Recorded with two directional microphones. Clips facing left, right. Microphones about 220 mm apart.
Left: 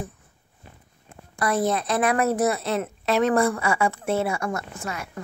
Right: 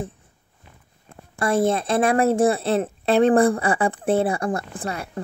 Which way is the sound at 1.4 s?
25° right (ahead or behind).